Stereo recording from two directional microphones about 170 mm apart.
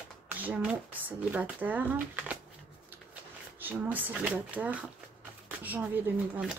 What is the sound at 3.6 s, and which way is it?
Speech, 10° right (ahead or behind).